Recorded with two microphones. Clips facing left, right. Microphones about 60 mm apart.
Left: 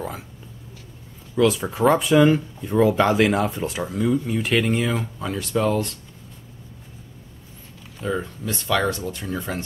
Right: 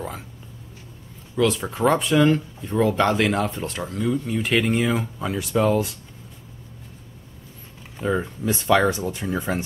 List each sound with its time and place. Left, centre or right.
1.3 s speech: centre
8.0 s speech: centre